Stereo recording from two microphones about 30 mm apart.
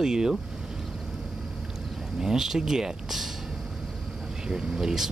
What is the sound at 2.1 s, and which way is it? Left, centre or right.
Speech, centre.